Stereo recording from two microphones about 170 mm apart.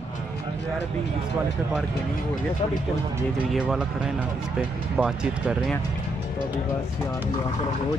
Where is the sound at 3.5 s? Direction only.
Centre (ahead or behind).